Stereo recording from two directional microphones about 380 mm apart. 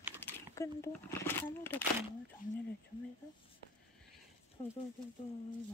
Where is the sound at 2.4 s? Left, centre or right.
Left.